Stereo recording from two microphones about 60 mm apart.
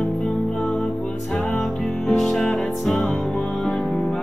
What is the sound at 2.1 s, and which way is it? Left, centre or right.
Music, centre.